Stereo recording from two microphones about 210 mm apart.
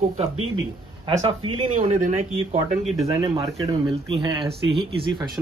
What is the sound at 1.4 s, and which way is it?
Speech, 90° right.